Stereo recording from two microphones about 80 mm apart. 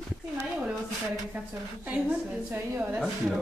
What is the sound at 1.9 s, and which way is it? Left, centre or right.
A woman's voice, right.